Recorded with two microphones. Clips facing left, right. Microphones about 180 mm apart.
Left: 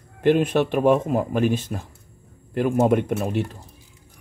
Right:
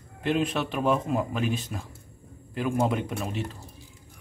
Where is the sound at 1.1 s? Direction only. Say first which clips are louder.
Left 6 dB; 50° left (ahead or behind).